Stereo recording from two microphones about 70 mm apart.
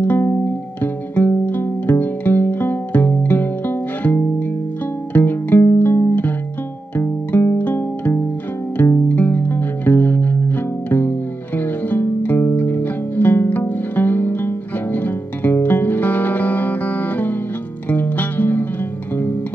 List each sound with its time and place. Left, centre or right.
0.0 s music: left
9.1 s music: left